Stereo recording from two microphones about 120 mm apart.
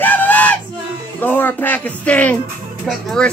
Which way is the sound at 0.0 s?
15° left (ahead or behind).